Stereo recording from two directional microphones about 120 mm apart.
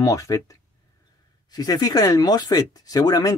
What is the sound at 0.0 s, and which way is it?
Speech, 30° left (ahead or behind).